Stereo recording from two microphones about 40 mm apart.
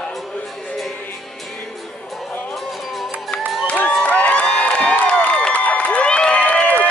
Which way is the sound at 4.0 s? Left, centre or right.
Left.